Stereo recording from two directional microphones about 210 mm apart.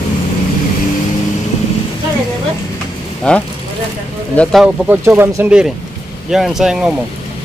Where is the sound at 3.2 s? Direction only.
5° left (ahead or behind).